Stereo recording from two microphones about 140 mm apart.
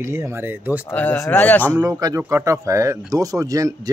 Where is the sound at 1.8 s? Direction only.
25° right (ahead or behind).